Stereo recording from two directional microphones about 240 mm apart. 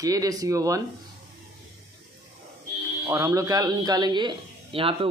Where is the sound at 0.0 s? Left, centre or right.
Centre.